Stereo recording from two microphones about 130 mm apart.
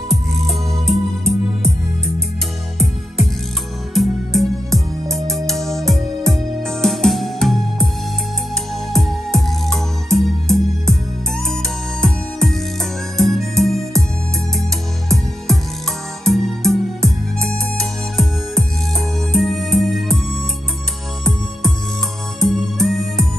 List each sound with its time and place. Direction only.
0.1 s music: centre (ahead or behind)
3.9 s music: centre (ahead or behind)
8.9 s music: 5° left (ahead or behind)
15.0 s music: centre (ahead or behind)
21.2 s music: centre (ahead or behind)